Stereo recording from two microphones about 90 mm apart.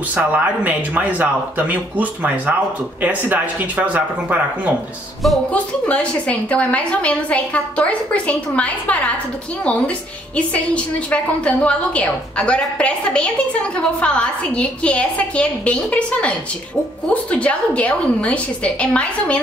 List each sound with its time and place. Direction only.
0.1 s speech: 15° right (ahead or behind)
5.5 s a woman's voice: 15° left (ahead or behind)